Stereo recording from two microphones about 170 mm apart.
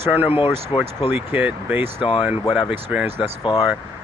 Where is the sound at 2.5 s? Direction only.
5° right (ahead or behind).